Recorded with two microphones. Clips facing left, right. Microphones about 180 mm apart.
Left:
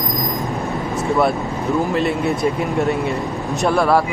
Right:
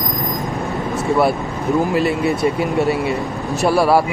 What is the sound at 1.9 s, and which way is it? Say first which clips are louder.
Speech: right 2 dB; 5° right (ahead or behind).